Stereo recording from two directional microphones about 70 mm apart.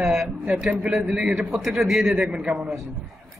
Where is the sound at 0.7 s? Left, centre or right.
Centre.